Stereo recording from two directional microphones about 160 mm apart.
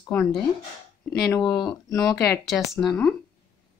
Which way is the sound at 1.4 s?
25° left (ahead or behind).